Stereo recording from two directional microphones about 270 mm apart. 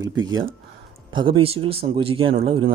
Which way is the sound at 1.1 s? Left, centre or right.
Centre.